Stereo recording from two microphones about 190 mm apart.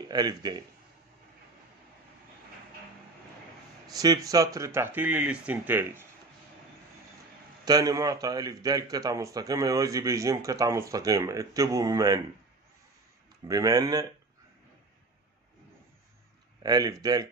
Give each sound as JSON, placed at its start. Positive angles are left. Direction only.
{"t": 0.1, "sound": "speech", "side_deg": -20}
{"t": 3.8, "sound": "a man's voice", "side_deg": -20}
{"t": 7.6, "sound": "a man's voice", "side_deg": -20}
{"t": 13.5, "sound": "speech", "side_deg": -20}
{"t": 16.6, "sound": "speech", "side_deg": -20}